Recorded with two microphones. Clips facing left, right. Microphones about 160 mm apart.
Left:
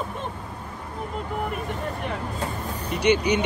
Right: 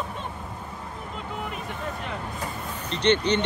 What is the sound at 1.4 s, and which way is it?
Vehicle, 55° left (ahead or behind).